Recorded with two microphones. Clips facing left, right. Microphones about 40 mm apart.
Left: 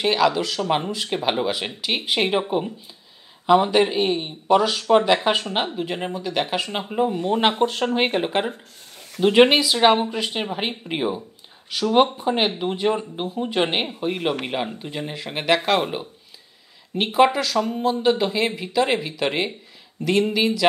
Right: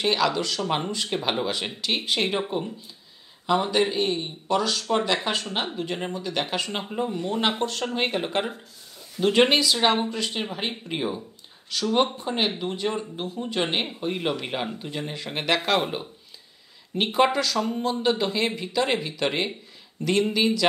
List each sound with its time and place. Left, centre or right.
0.0 s speech: centre
3.4 s speech: centre
9.2 s speech: centre
16.9 s speech: centre